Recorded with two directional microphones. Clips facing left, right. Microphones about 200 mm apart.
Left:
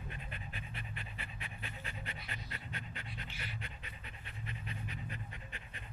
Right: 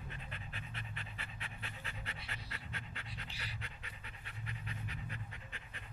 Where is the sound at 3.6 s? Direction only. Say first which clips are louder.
Left 2 dB; 20° left (ahead or behind).